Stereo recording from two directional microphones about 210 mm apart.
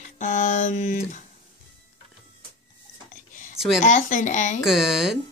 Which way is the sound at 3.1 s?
35° left (ahead or behind).